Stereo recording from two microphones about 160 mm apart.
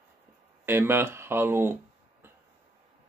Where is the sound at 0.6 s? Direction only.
15° right (ahead or behind).